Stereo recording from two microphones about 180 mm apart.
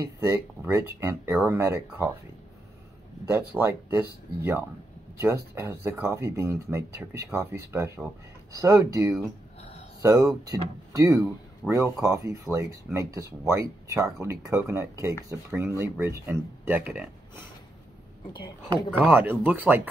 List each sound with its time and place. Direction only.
0.3 s speech: 15° right (ahead or behind)
3.3 s speech: 10° right (ahead or behind)
9.6 s a sound: 35° left (ahead or behind)
10.0 s speech: 20° right (ahead or behind)
18.9 s speech: 10° right (ahead or behind)